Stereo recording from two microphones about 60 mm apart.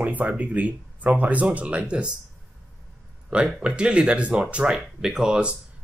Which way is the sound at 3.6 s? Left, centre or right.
Centre.